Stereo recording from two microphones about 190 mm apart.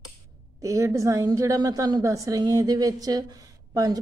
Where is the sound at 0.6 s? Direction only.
15° right (ahead or behind).